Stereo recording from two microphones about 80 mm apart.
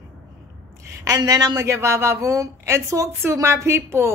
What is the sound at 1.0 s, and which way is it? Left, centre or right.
A woman's voice, right.